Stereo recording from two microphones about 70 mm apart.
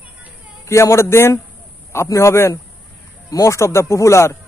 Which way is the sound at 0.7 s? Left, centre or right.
Left.